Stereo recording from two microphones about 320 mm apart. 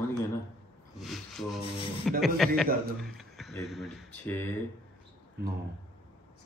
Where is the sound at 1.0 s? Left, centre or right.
Centre.